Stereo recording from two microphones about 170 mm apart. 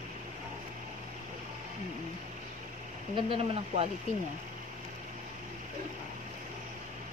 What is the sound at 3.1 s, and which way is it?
Speech, 30° right (ahead or behind).